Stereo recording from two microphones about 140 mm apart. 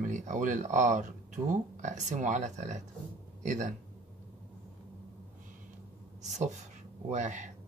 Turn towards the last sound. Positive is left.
turn(degrees=-60)  # may be behind; listen again after turning